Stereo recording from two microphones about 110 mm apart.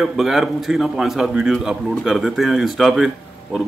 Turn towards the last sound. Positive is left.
turn(degrees=0)  # may be behind; listen again after turning